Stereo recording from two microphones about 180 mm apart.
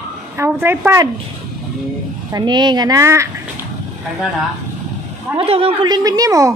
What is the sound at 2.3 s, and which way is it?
A woman's voice, 25° right (ahead or behind).